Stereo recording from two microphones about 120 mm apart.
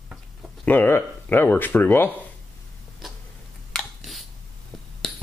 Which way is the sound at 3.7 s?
Centre (ahead or behind).